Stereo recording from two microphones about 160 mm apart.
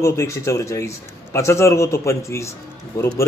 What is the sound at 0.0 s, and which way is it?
A man's voice, 20° left (ahead or behind).